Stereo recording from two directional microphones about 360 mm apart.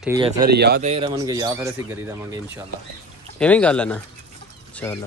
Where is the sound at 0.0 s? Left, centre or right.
Centre.